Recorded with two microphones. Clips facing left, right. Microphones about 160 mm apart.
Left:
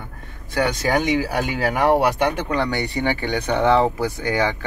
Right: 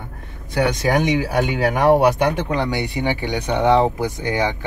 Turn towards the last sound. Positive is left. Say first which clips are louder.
# even
turn(degrees=-15)  # may be behind; listen again after turning